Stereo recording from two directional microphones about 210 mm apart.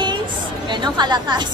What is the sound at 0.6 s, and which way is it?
Chatter, 20° right (ahead or behind).